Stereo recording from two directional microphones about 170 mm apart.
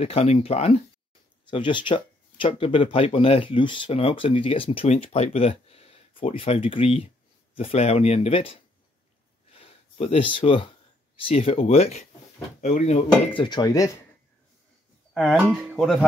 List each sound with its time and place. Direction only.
0.0 s speech: 35° left (ahead or behind)
1.5 s speech: 30° left (ahead or behind)
9.5 s a sound: 35° left (ahead or behind)
11.1 s speech: 35° left (ahead or behind)
15.1 s speech: centre (ahead or behind)